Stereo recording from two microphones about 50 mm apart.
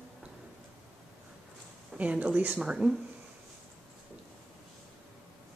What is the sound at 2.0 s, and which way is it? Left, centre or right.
Speech, right.